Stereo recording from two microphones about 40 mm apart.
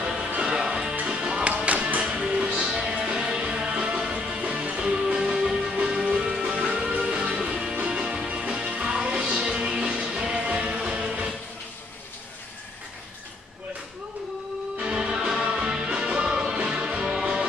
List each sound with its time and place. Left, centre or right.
0.0 s music: right
1.0 s music: right
8.6 s music: right
8.9 s music: centre
14.8 s music: right